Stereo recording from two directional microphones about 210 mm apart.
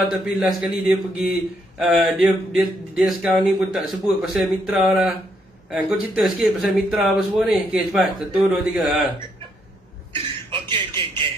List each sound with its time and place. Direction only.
0.1 s a man's voice: 5° right (ahead or behind)
10.1 s a man's voice: 25° right (ahead or behind)